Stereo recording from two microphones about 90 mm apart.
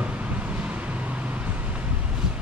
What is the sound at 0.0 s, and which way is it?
Vehicle, 15° right (ahead or behind).